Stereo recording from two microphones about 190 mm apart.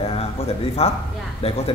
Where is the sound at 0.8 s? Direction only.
35° left (ahead or behind).